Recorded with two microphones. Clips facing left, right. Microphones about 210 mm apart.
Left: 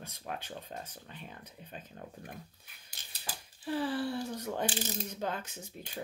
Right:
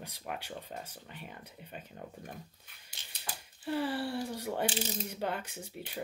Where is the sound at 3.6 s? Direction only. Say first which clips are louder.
Even; 65° right (ahead or behind).